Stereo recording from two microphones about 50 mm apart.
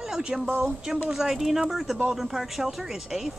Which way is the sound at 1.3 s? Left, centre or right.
Centre.